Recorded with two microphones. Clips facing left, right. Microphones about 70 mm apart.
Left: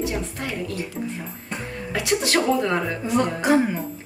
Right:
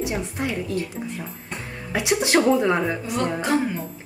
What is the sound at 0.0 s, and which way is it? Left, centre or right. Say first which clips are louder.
Speech: right 1 dB; centre.